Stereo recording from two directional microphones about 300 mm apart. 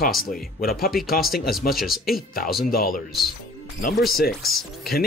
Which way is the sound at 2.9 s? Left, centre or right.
Centre.